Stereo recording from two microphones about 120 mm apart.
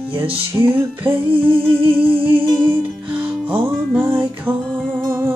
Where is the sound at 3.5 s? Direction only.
20° right (ahead or behind).